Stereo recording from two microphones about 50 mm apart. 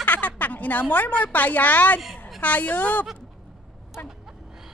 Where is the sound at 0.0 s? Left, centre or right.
Left.